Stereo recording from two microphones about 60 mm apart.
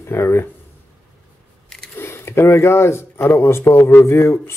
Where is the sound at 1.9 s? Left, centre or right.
Left.